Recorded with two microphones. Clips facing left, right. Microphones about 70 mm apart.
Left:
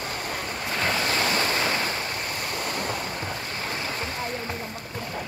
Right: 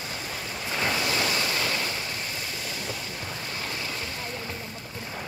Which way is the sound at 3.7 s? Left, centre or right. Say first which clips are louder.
Left 3 dB; left.